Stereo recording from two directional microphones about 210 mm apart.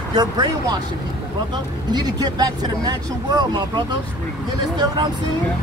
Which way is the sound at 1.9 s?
20° right (ahead or behind).